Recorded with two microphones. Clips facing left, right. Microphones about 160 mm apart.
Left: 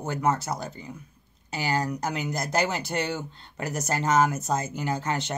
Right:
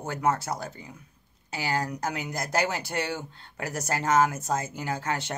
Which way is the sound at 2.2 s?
5° right (ahead or behind).